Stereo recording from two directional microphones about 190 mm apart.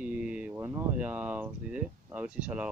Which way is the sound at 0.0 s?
5° right (ahead or behind).